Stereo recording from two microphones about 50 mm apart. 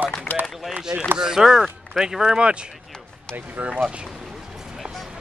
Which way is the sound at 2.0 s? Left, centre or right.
Centre.